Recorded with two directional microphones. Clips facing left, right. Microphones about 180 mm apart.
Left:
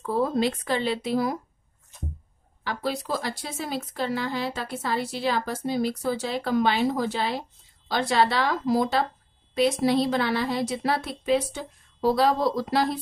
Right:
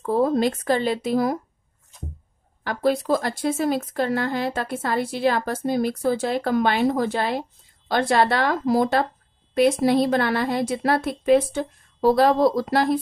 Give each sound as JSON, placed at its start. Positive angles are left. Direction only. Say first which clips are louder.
{"t": 0.0, "sound": "speech", "louder": "right 4 dB", "side_deg": -45}
{"t": 2.6, "sound": "speech", "louder": "right 7 dB", "side_deg": -50}